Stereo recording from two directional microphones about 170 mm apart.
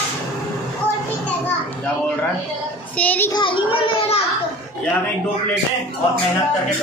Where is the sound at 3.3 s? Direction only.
30° left (ahead or behind).